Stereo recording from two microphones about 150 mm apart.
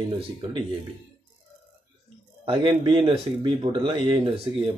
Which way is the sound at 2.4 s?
35° right (ahead or behind).